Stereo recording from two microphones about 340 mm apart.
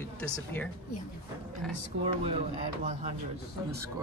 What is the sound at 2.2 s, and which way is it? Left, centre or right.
Speech, centre.